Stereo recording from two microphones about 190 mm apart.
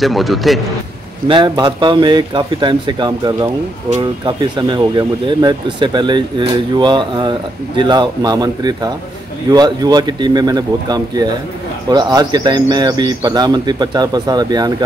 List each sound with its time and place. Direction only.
0.0 s a man's voice: centre (ahead or behind)
1.2 s speech: 25° right (ahead or behind)
4.6 s speech: 20° right (ahead or behind)